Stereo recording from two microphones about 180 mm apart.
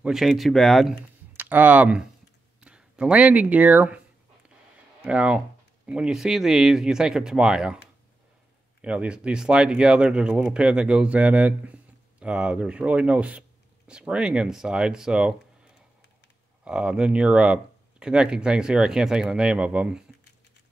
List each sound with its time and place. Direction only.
0.0 s speech: centre (ahead or behind)
1.3 s speech: 10° right (ahead or behind)
5.0 s speech: 5° right (ahead or behind)
8.8 s speech: 5° right (ahead or behind)
16.6 s speech: 5° right (ahead or behind)